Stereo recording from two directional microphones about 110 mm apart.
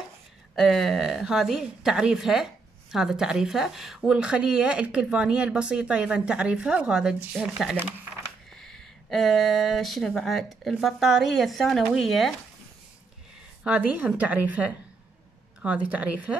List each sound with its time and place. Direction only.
0.6 s speech: centre (ahead or behind)
13.7 s speech: 15° right (ahead or behind)